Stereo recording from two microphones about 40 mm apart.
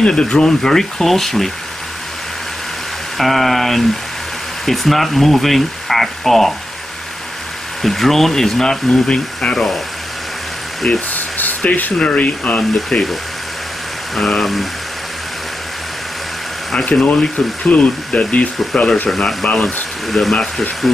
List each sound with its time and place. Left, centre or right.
0.0 s speech: left
3.2 s speech: centre
7.8 s speech: centre; by 9.6 s left
10.8 s speech: left
11.6 s speech: left
12.0 s speech: left
12.9 s speech: centre
14.1 s speech: centre
17.0 s speech: left
19.0 s speech: centre
20.1 s speech: centre